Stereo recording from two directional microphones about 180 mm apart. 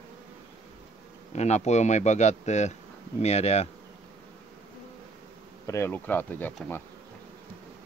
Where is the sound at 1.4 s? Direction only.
40° left (ahead or behind).